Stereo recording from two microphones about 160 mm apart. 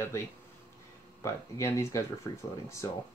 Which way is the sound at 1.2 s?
20° left (ahead or behind).